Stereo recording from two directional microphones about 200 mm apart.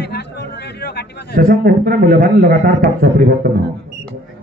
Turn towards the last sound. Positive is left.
turn(degrees=-50)  # may be behind; listen again after turning